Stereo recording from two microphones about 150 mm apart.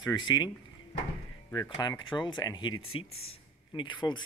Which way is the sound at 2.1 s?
30° left (ahead or behind).